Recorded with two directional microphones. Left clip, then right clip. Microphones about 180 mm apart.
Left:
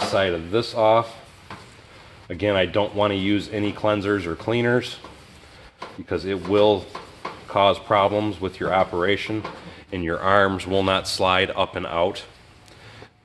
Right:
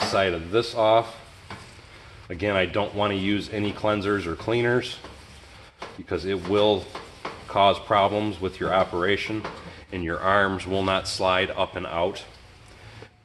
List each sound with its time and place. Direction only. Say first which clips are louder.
0.1 s speech: left 1 dB; 40° left (ahead or behind)
2.2 s speech: left 3 dB; 40° left (ahead or behind)
6.0 s speech: left 2 dB; 40° left (ahead or behind)
9.8 s speech: left 2 dB; 50° left (ahead or behind)